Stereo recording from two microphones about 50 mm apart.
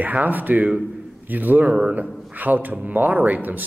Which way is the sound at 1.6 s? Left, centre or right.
Centre.